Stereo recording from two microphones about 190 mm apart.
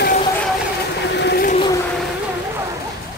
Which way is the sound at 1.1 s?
60° left (ahead or behind).